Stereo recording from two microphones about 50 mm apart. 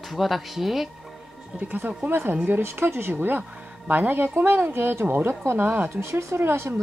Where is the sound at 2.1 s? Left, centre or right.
Right.